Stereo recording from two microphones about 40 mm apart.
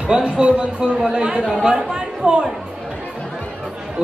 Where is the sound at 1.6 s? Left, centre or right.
Centre.